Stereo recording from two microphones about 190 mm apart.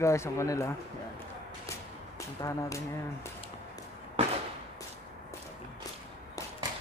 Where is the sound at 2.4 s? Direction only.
20° left (ahead or behind).